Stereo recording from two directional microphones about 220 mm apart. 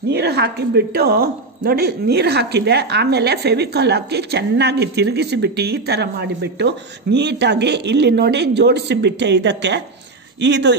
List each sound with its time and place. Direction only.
0.1 s speech: 50° right (ahead or behind)